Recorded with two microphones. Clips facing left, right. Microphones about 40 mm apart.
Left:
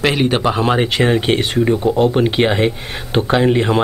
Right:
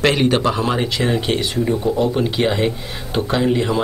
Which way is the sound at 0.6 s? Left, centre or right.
Left.